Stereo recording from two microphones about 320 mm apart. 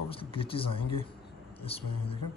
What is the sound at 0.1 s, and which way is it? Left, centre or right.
A man's voice, centre.